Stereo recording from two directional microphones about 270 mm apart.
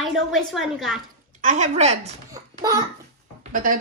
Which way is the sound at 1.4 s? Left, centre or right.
Right.